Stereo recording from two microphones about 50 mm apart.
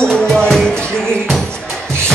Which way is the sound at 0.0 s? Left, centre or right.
Centre.